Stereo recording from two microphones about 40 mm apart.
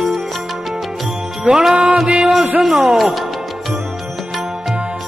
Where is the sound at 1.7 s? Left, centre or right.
Right.